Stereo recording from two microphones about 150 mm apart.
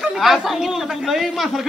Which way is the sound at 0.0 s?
Centre (ahead or behind).